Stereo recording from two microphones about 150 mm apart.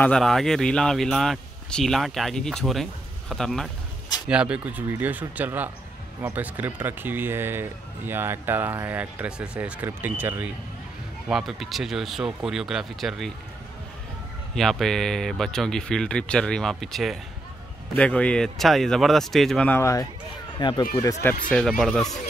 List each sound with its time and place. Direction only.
0.0 s speech: 5° left (ahead or behind)
4.3 s speech: 5° right (ahead or behind)
11.2 s speech: centre (ahead or behind)
14.5 s speech: centre (ahead or behind)
19.8 s speech: 20° left (ahead or behind)
21.5 s speech: 5° left (ahead or behind)